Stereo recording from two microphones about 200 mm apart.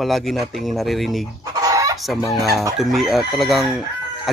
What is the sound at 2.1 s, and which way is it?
Speech, centre (ahead or behind).